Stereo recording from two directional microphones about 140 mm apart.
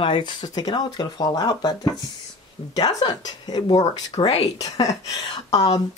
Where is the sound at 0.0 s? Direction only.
35° left (ahead or behind).